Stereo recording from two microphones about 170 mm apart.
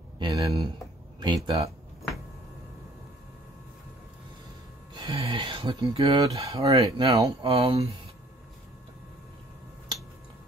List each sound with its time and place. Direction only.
0.2 s speech: 20° right (ahead or behind)
4.9 s speech: 30° right (ahead or behind)